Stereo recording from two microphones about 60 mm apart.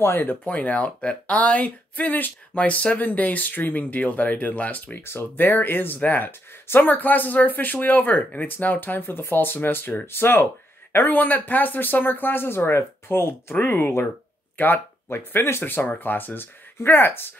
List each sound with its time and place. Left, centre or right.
0.0 s speech: left
0.5 s speech: left
5.0 s speech: left